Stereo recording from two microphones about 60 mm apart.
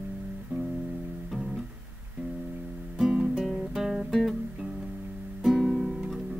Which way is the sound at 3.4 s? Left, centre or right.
Centre.